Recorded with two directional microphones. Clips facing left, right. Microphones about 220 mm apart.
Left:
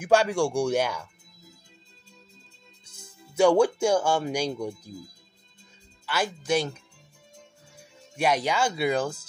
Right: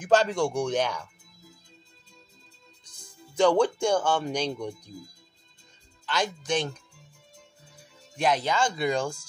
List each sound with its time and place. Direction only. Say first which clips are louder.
0.0 s speech: left 1 dB; 10° left (ahead or behind)
2.8 s speech: even; 5° left (ahead or behind)
6.0 s speech: left 1 dB; 5° left (ahead or behind)
8.2 s speech: left 1 dB; 10° left (ahead or behind)